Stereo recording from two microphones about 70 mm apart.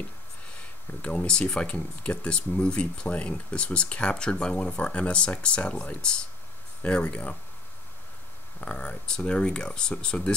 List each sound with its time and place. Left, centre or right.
1.0 s speech: centre
8.5 s speech: centre